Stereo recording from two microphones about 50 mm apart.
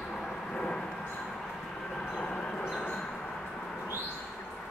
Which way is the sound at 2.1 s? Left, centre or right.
Centre.